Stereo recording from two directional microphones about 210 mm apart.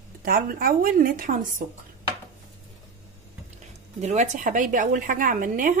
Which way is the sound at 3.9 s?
35° right (ahead or behind).